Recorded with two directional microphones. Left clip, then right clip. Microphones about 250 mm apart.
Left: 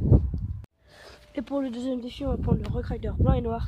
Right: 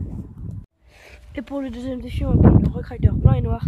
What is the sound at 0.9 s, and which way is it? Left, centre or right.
Speech, centre.